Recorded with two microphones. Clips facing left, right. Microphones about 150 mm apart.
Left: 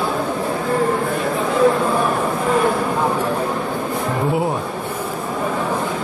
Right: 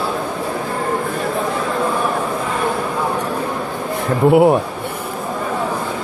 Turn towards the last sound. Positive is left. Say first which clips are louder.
# right 9 dB
turn(degrees=-65)  # may be behind; listen again after turning